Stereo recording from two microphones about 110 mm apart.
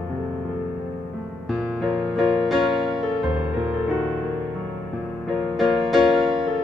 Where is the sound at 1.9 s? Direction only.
Centre (ahead or behind).